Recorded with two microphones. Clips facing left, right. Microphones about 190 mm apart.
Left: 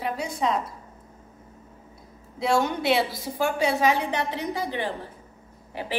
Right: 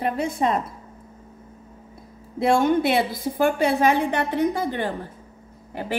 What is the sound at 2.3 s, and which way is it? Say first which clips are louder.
A woman's voice: right 5 dB; 55° right (ahead or behind).